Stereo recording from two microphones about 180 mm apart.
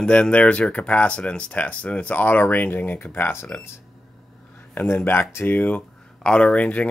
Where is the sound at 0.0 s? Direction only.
5° left (ahead or behind).